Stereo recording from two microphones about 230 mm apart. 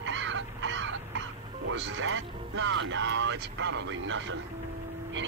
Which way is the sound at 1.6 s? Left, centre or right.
Right.